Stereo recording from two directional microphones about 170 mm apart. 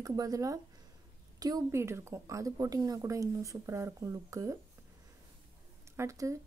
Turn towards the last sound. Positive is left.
turn(degrees=-20)  # may be behind; listen again after turning